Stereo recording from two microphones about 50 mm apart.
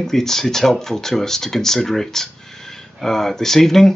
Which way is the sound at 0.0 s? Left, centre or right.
Centre.